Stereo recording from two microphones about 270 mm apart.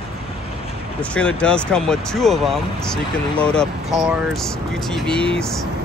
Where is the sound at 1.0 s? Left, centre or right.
Centre.